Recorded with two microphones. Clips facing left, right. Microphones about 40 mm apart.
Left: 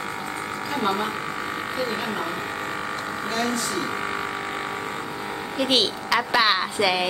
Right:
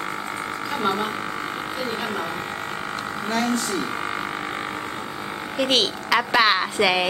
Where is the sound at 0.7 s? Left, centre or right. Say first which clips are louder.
Even; centre.